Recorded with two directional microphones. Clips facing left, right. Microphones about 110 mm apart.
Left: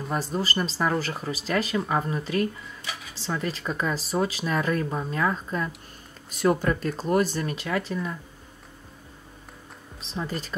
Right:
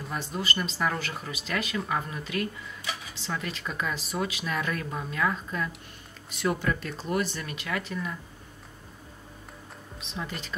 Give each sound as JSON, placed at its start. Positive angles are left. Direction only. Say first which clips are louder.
{"t": 0.1, "sound": "speech", "louder": "left 5 dB", "side_deg": 35}
{"t": 9.9, "sound": "speech", "louder": "left 5 dB", "side_deg": 35}